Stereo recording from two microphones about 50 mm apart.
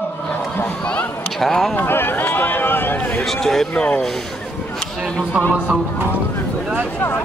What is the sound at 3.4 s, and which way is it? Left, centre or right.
Speech, centre.